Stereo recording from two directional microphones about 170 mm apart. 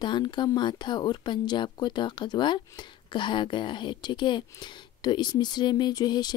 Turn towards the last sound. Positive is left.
turn(degrees=25)  # may be behind; listen again after turning